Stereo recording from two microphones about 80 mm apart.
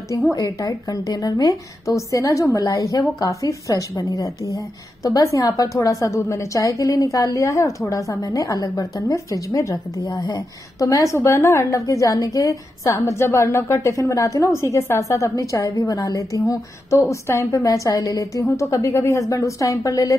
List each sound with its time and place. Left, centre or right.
0.3 s a woman's voice: left
10.0 s a woman's voice: left